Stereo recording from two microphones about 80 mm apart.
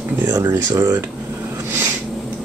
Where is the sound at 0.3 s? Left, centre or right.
Right.